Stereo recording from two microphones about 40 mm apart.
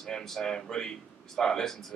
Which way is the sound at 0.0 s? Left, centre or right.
Centre.